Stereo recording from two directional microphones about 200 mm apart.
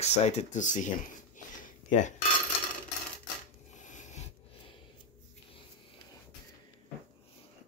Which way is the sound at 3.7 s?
40° left (ahead or behind).